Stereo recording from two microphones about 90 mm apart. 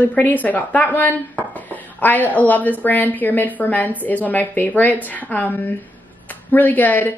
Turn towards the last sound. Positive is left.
turn(degrees=20)  # may be behind; listen again after turning